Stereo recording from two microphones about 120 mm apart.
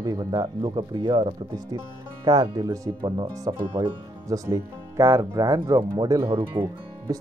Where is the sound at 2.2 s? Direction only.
30° right (ahead or behind).